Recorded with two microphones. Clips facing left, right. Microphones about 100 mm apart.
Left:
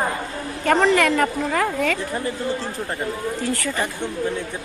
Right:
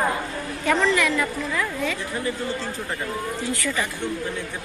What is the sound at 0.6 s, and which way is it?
Speech, 50° left (ahead or behind).